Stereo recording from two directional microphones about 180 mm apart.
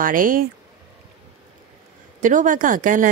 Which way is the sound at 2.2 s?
45° right (ahead or behind).